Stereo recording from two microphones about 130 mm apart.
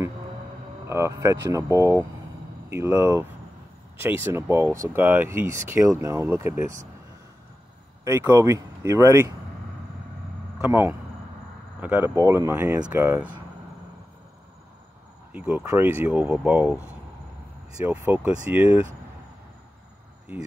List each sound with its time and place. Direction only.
0.8 s speech: 20° right (ahead or behind)
8.0 s speech: 25° right (ahead or behind)
10.6 s speech: 15° right (ahead or behind)
15.3 s speech: 10° right (ahead or behind)
17.8 s speech: 15° right (ahead or behind)